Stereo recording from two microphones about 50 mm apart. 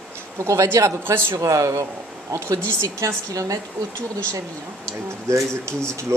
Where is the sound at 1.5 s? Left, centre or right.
Right.